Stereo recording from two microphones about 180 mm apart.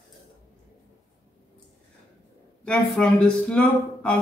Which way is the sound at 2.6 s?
5° left (ahead or behind).